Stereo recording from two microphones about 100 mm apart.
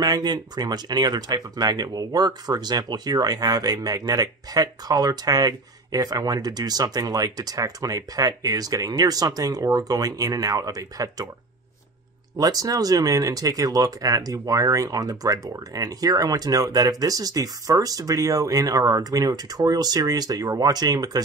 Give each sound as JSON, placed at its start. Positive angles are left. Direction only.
{"t": 0.0, "sound": "speech", "side_deg": -45}
{"t": 12.4, "sound": "speech", "side_deg": -35}